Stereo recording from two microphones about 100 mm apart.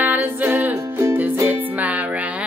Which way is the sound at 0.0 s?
20° right (ahead or behind).